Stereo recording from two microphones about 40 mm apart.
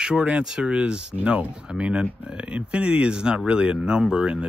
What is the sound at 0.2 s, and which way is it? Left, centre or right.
Speech, right.